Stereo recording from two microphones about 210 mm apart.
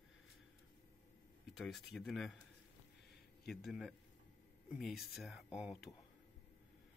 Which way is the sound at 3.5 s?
Centre (ahead or behind).